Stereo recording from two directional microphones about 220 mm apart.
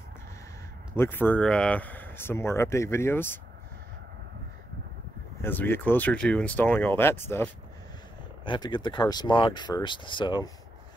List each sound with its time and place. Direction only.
0.9 s speech: 10° left (ahead or behind)
5.4 s speech: 10° left (ahead or behind)
8.5 s speech: 20° left (ahead or behind)